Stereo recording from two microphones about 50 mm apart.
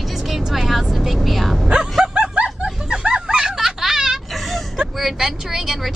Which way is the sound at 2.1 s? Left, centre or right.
Right.